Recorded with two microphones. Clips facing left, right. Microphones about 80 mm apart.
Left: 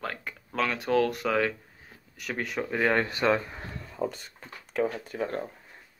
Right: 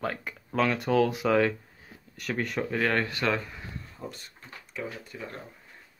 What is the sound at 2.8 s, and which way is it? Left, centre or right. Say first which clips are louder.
Speech: left 3 dB; centre.